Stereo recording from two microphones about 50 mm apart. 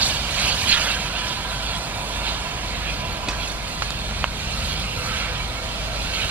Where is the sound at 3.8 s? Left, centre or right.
Right.